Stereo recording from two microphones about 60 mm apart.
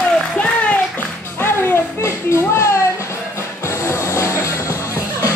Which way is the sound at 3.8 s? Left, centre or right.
Left.